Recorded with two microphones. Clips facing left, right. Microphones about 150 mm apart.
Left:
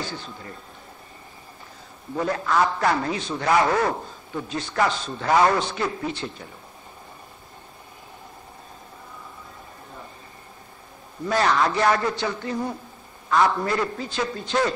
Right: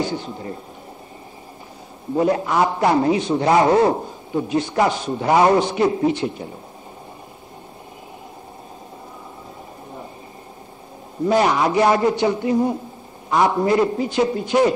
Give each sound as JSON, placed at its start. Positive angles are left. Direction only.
{"t": 0.0, "sound": "a man's voice", "side_deg": -15}
{"t": 2.1, "sound": "a man's voice", "side_deg": -20}
{"t": 11.2, "sound": "a man's voice", "side_deg": -15}